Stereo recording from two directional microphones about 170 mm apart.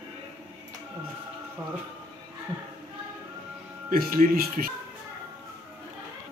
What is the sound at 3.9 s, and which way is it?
Speech, 55° right (ahead or behind).